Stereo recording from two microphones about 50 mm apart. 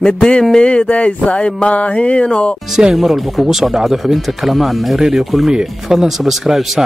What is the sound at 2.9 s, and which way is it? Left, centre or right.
Speech, centre.